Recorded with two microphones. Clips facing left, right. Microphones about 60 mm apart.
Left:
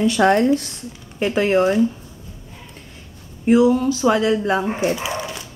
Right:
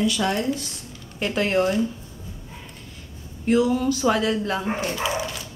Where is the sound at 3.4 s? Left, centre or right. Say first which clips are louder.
Left 5 dB; centre.